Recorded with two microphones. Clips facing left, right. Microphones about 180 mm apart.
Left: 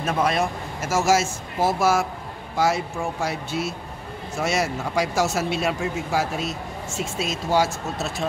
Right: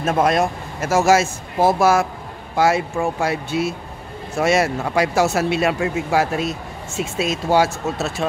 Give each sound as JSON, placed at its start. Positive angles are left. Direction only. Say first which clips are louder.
{"t": 0.0, "sound": "speech", "louder": "right 5 dB", "side_deg": -50}
{"t": 7.5, "sound": "speech", "louder": "right 4 dB", "side_deg": -65}